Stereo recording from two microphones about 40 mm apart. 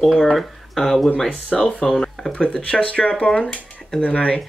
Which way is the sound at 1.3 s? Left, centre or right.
Left.